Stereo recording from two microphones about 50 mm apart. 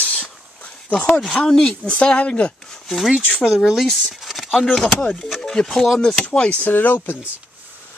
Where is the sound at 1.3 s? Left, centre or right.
Centre.